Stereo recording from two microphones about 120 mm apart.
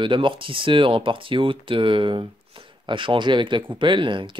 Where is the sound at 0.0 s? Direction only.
45° right (ahead or behind).